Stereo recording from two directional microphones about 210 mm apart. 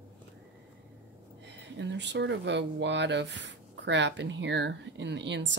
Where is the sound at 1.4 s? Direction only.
55° right (ahead or behind).